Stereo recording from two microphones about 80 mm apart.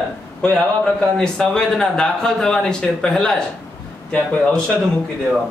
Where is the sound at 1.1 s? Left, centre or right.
Centre.